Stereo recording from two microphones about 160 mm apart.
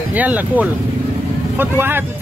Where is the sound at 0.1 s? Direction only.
10° right (ahead or behind).